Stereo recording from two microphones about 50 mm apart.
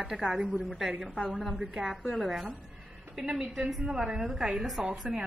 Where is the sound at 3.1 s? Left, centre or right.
Centre.